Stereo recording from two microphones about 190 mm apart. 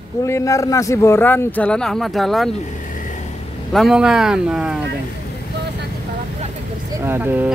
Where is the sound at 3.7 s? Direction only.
Centre (ahead or behind).